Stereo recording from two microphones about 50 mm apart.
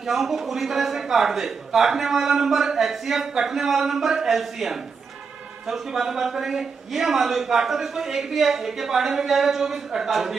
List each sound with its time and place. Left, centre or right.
0.0 s a man's voice: centre